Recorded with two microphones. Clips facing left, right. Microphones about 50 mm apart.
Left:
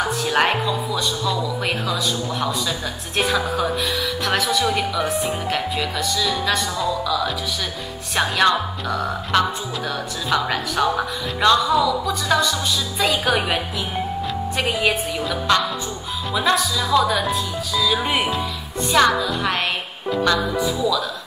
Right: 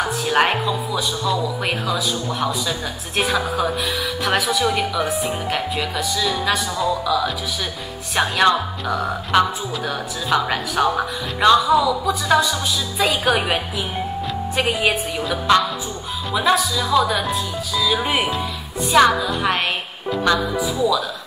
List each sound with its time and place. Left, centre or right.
0.0 s speech: centre
3.2 s speech: centre
14.6 s speech: centre